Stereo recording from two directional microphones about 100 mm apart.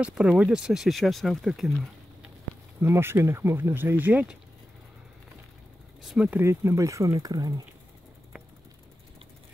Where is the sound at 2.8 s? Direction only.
25° right (ahead or behind).